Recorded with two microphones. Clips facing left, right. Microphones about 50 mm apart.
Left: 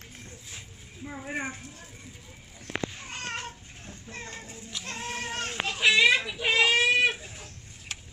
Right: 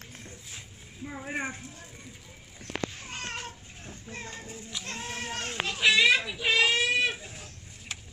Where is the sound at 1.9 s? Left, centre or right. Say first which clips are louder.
Even; centre.